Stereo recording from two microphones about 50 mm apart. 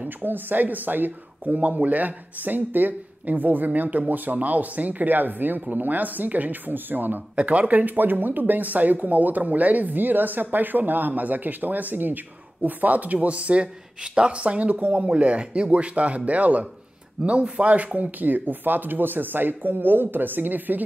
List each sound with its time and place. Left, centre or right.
0.2 s speech: right
7.3 s speech: right